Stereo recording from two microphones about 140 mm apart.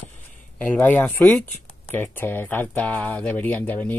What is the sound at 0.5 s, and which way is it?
Speech, 10° left (ahead or behind).